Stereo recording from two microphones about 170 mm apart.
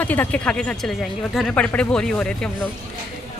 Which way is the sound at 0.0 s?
10° left (ahead or behind).